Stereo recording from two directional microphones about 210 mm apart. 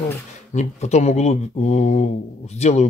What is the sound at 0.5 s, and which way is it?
Speech, 30° left (ahead or behind).